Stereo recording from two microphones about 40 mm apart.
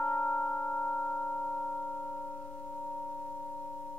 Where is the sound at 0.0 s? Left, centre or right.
Left.